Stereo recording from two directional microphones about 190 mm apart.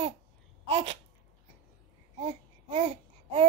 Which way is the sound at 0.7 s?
35° right (ahead or behind).